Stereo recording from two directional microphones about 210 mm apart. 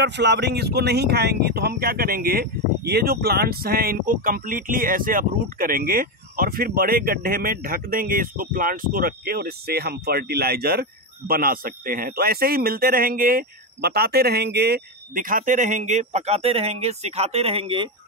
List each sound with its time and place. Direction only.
0.0 s speech: 55° right (ahead or behind); by 17.8 s 25° right (ahead or behind)